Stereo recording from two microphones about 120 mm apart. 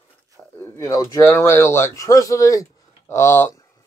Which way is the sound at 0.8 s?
30° left (ahead or behind).